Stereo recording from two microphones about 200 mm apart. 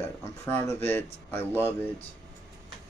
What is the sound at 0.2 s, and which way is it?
Speech, 10° left (ahead or behind).